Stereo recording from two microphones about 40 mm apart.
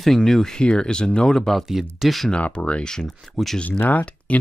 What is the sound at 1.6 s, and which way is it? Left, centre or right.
Speech, centre.